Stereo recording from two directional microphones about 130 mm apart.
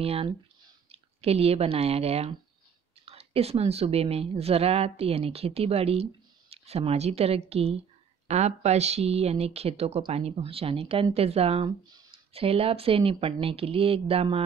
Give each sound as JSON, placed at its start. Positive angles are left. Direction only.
{"t": 0.0, "sound": "speech", "side_deg": -50}